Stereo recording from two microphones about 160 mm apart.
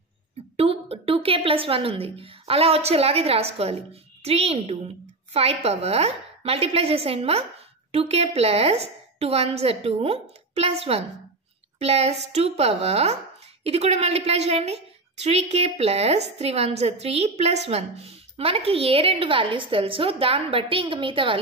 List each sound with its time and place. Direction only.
0.6 s a woman's voice: 35° right (ahead or behind)